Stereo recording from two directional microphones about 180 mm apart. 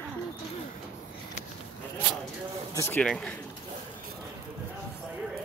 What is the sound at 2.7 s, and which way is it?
Speech, 15° left (ahead or behind).